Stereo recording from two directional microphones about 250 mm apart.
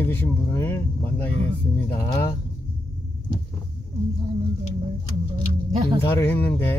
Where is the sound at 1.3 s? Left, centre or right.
Left.